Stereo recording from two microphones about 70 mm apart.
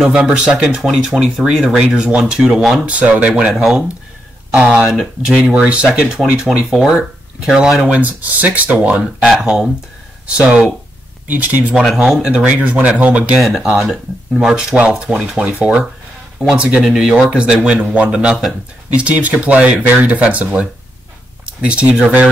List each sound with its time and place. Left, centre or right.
0.0 s speech: centre
2.9 s speech: right
3.5 s speech: centre
4.5 s speech: centre
12.0 s speech: centre
13.4 s speech: centre
14.3 s speech: centre
16.5 s speech: centre